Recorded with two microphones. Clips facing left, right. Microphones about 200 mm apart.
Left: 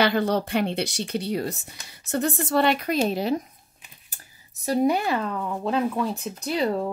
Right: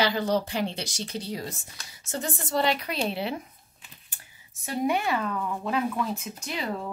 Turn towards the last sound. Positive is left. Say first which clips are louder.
# left 7 dB
turn(degrees=35)  # may be behind; listen again after turning